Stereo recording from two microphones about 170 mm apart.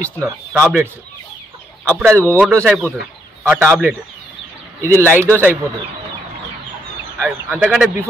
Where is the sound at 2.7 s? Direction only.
15° right (ahead or behind).